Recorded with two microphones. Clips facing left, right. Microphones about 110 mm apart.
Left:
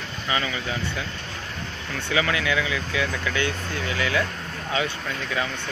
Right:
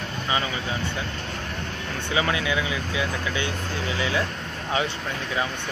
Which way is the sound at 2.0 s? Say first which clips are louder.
Left 1 dB; 25° right (ahead or behind).